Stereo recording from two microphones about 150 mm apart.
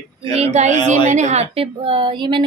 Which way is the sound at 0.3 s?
45° right (ahead or behind).